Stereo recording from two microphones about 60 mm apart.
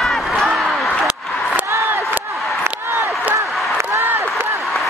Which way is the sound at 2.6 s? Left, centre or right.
Right.